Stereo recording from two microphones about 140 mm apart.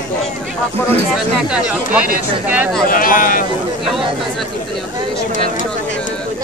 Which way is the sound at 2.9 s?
80° left.